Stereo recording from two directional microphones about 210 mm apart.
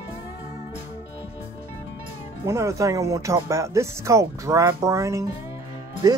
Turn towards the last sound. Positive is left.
turn(degrees=-15)  # may be behind; listen again after turning